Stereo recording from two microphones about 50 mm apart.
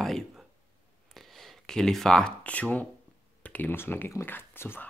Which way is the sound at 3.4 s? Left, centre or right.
Left.